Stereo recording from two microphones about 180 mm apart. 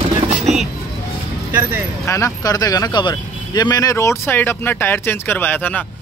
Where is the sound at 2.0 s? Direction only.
15° left (ahead or behind).